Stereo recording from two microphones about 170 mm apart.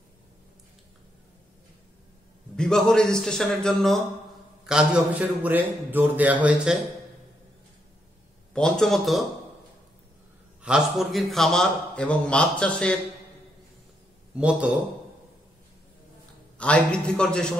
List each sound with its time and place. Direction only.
2.5 s a man's voice: 5° left (ahead or behind)
8.5 s a man's voice: 5° left (ahead or behind)
10.6 s a man's voice: 5° right (ahead or behind)
14.3 s a man's voice: 5° right (ahead or behind)
16.5 s a man's voice: 5° left (ahead or behind)